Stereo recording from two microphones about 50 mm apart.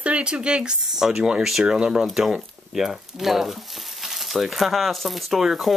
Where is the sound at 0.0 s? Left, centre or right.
Right.